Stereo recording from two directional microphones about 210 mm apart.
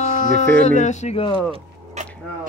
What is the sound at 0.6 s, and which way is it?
Speech, 35° left (ahead or behind).